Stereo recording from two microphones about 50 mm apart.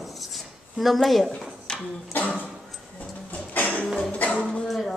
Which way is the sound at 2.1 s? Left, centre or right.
Left.